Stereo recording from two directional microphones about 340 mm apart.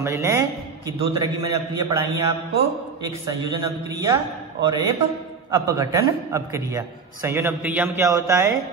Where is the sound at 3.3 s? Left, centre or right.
Centre.